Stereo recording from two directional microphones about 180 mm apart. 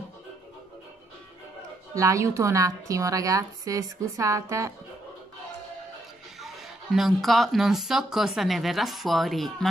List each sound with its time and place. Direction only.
2.0 s a woman's voice: 15° right (ahead or behind)
6.4 s speech: centre (ahead or behind)